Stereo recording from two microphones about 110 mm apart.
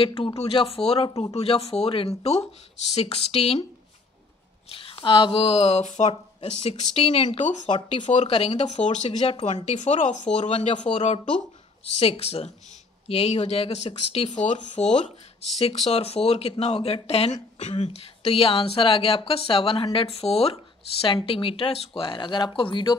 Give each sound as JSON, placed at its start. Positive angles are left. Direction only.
{"t": 0.0, "sound": "speech", "side_deg": 55}
{"t": 4.6, "sound": "speech", "side_deg": 55}
{"t": 8.1, "sound": "speech", "side_deg": 75}
{"t": 9.7, "sound": "speech", "side_deg": 90}
{"t": 10.4, "sound": "speech", "side_deg": 75}
{"t": 10.9, "sound": "speech", "side_deg": 75}
{"t": 15.6, "sound": "speech", "side_deg": 65}
{"t": 21.0, "sound": "speech", "side_deg": 55}